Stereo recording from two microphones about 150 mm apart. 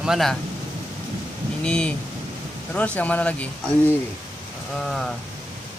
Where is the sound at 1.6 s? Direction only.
5° left (ahead or behind).